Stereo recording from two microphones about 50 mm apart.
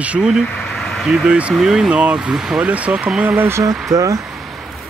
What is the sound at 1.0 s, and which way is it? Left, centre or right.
Speech, centre.